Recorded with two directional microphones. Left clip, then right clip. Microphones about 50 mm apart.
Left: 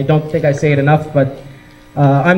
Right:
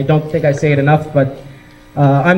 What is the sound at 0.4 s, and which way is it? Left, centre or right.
A man's voice, right.